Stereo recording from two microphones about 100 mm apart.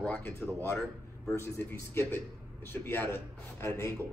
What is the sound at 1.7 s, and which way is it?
Speech, 20° left (ahead or behind).